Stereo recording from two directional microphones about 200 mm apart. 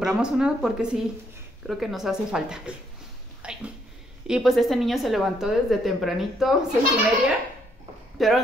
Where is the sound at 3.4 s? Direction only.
5° right (ahead or behind).